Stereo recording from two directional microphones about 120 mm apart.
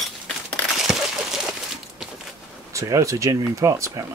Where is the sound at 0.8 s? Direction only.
Centre (ahead or behind).